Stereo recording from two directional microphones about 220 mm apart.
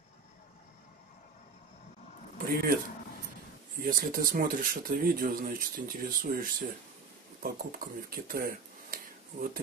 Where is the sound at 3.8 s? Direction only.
40° right (ahead or behind).